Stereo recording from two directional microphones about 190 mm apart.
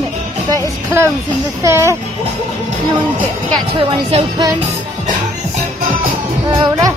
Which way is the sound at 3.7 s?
25° right (ahead or behind).